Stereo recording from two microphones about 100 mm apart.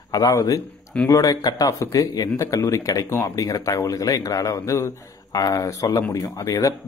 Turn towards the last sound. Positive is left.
turn(degrees=35)  # may be behind; listen again after turning